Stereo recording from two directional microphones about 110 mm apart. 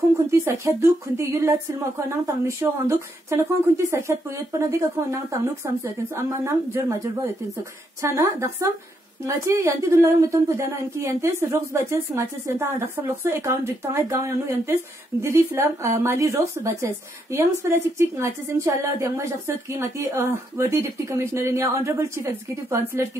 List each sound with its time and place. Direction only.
0.3 s speech: 25° right (ahead or behind)